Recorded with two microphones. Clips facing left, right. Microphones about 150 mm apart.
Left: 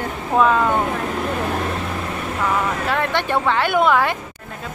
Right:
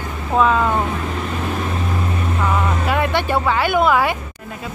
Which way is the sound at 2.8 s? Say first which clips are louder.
Right 2 dB; 10° right (ahead or behind).